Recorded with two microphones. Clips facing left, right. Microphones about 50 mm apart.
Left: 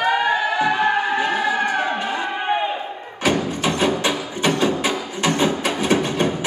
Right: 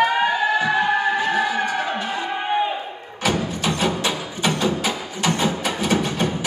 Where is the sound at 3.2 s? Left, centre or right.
Left.